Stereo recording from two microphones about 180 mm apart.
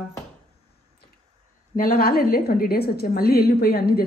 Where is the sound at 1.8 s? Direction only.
55° left (ahead or behind).